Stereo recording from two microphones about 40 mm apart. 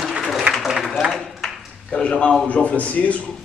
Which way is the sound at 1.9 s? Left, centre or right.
Left.